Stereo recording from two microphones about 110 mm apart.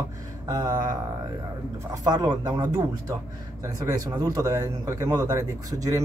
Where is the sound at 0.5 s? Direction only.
35° right (ahead or behind).